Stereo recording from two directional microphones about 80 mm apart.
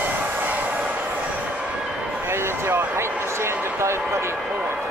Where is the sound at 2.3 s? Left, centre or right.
Right.